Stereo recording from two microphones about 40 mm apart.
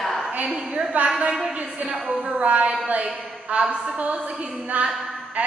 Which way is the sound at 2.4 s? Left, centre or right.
Right.